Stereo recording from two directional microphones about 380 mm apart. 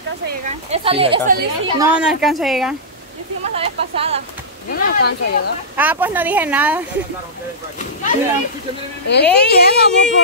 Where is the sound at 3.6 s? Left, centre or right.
Centre.